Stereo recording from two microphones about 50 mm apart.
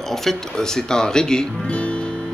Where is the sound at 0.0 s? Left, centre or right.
Centre.